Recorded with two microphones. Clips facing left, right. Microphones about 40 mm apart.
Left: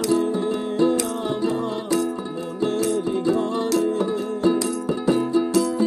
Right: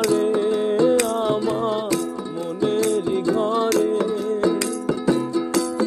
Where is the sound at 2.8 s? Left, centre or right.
Right.